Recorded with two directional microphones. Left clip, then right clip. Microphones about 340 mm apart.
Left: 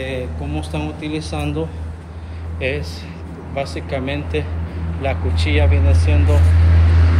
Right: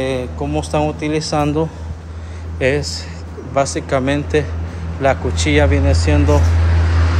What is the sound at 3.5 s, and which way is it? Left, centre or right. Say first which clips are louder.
Speech: right 7 dB; right.